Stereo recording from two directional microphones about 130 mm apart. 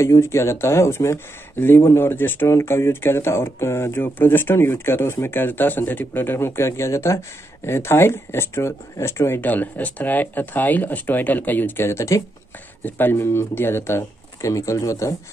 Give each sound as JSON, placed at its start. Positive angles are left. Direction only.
{"t": 0.0, "sound": "speech", "side_deg": 20}